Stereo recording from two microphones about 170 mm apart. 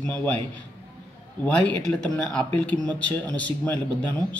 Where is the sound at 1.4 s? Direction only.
10° left (ahead or behind).